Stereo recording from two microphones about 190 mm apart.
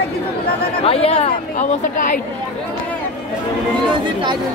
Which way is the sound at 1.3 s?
45° left (ahead or behind).